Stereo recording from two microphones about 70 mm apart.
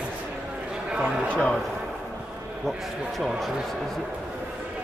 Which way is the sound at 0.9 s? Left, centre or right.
Centre.